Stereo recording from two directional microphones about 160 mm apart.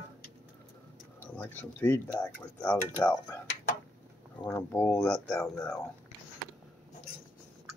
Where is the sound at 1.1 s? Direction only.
15° left (ahead or behind).